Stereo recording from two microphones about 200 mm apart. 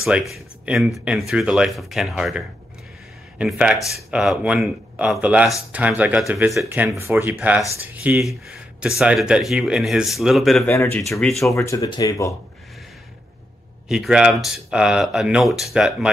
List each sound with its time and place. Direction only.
0.3 s speech: centre (ahead or behind)
10.7 s speech: 10° left (ahead or behind)
11.0 s speech: centre (ahead or behind)
11.5 s speech: 15° left (ahead or behind)
13.8 s speech: centre (ahead or behind)